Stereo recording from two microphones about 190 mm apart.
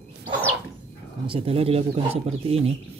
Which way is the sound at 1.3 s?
30° right (ahead or behind).